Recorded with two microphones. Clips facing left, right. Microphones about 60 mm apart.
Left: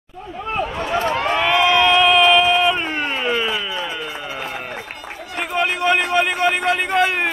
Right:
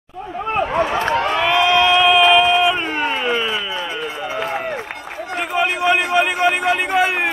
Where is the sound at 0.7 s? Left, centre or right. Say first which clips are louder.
Right 3 dB; right.